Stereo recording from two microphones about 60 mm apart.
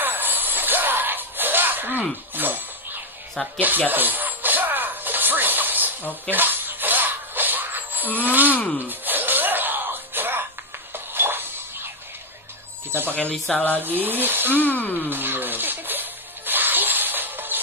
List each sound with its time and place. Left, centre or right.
0.0 s a sound: right
3.5 s speech: right
3.9 s music: right
8.2 s speech: right
8.5 s speech: left
8.8 s music: right
13.1 s speech: left
13.7 s speech: right
14.6 s speech: left
15.0 s music: right